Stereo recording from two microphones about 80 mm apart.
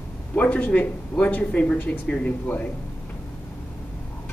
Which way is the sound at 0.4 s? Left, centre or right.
Centre.